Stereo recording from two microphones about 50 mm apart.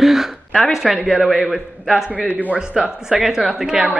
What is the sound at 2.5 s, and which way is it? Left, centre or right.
Speech, centre.